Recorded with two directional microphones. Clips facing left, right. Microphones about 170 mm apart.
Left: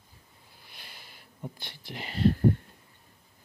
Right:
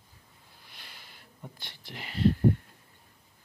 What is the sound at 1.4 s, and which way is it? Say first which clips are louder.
Speech: left 6 dB; 15° left (ahead or behind).